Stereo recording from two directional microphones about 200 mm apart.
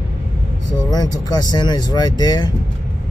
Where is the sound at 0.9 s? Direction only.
20° left (ahead or behind).